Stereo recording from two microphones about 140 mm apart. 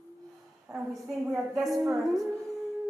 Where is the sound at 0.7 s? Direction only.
20° right (ahead or behind).